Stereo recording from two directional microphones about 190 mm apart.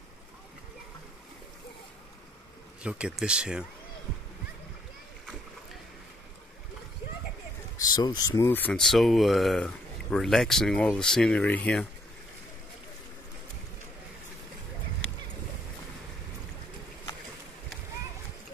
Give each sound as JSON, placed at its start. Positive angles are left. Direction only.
{"t": 2.8, "sound": "speech", "side_deg": -5}
{"t": 7.8, "sound": "speech", "side_deg": 20}